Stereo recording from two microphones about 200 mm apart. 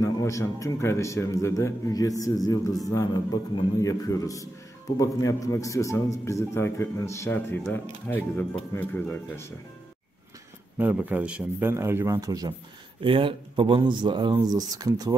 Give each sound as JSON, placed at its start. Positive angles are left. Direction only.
{"t": 0.0, "sound": "a man's voice", "side_deg": 15}
{"t": 10.8, "sound": "a man's voice", "side_deg": -5}